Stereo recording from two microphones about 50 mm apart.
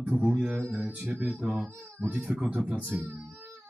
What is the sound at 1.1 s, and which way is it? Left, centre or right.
Speech, right.